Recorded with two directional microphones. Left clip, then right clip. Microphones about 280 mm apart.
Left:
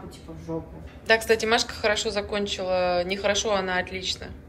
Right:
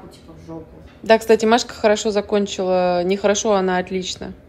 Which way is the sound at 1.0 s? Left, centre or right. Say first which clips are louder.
Right 7 dB; centre.